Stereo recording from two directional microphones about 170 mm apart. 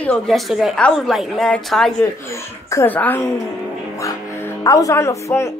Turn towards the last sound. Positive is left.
turn(degrees=15)  # may be behind; listen again after turning